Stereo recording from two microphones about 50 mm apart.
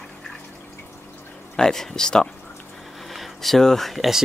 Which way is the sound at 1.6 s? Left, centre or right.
Centre.